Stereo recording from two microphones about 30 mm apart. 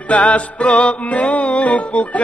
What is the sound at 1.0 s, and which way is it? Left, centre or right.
Speech, left.